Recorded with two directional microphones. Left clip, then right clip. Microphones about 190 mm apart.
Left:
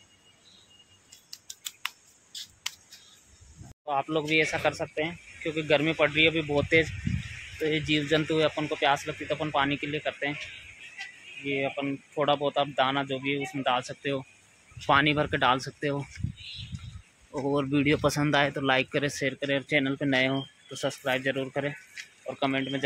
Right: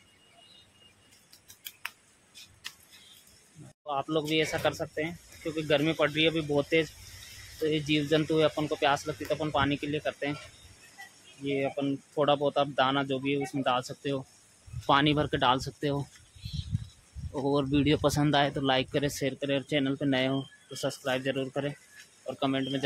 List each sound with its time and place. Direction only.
1.3 s tick: 15° left (ahead or behind)
3.8 s speech: 5° right (ahead or behind)
11.4 s speech: 10° right (ahead or behind)
17.3 s speech: 5° right (ahead or behind)